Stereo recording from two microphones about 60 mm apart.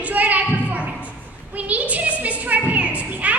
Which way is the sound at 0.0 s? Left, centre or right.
Right.